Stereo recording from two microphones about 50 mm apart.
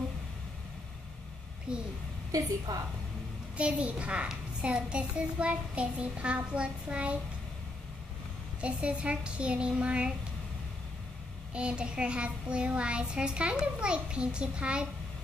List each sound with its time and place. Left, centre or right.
1.7 s speech: centre
3.5 s a child's voice: right
8.5 s a child's voice: right
11.5 s a child's voice: right